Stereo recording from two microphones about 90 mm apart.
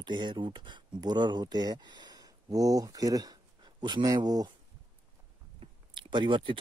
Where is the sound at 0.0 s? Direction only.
55° right (ahead or behind).